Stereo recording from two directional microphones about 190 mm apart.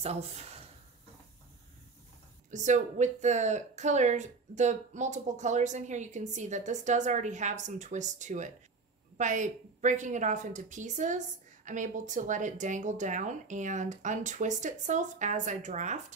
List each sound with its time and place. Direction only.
0.0 s a woman's voice: 35° right (ahead or behind)
2.5 s a woman's voice: 40° right (ahead or behind)